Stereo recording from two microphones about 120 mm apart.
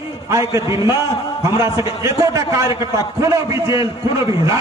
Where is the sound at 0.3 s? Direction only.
25° right (ahead or behind).